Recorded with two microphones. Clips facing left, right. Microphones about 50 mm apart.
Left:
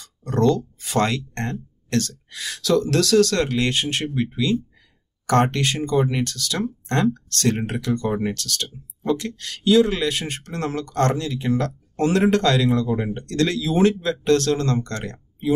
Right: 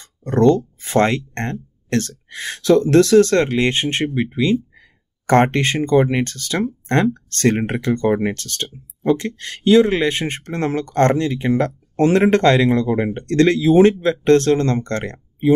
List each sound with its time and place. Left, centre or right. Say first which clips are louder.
0.0 s speech: right 5 dB; right